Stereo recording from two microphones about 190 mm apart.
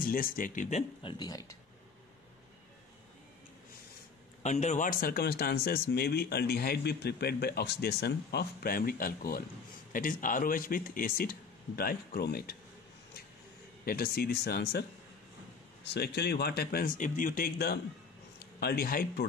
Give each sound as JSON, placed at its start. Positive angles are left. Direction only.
{"t": 0.0, "sound": "speech", "side_deg": 50}
{"t": 1.1, "sound": "speech", "side_deg": 20}
{"t": 4.4, "sound": "speech", "side_deg": 40}
{"t": 13.8, "sound": "speech", "side_deg": 55}